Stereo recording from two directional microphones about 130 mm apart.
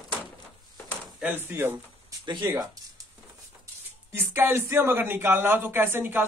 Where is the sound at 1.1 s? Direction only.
15° right (ahead or behind).